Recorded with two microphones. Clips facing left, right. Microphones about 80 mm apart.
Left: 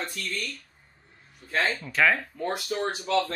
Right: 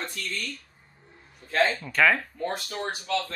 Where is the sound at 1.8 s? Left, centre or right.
Centre.